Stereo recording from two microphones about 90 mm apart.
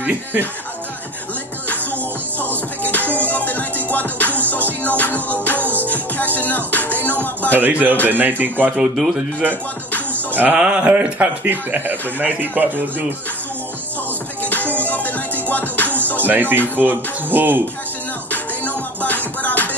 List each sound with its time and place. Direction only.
2.8 s music: 20° left (ahead or behind)
7.1 s speech: 20° left (ahead or behind)
7.5 s speech: 20° right (ahead or behind)
8.7 s speech: 10° right (ahead or behind)
10.3 s speech: 15° right (ahead or behind)
14.4 s music: 15° left (ahead or behind)
16.3 s speech: 20° right (ahead or behind)
18.3 s music: 15° left (ahead or behind)